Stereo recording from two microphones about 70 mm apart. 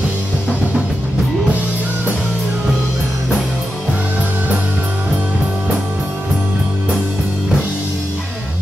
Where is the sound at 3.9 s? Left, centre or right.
Centre.